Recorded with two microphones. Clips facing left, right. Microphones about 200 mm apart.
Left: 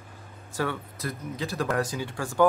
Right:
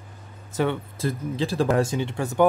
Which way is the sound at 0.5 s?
20° right (ahead or behind).